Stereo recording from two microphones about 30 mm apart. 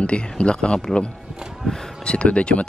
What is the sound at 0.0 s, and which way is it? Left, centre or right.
Speech, left.